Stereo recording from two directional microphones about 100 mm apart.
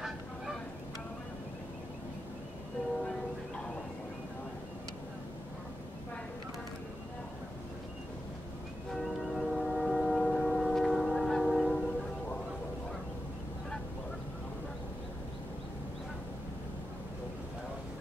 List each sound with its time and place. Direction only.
8.9 s train: centre (ahead or behind)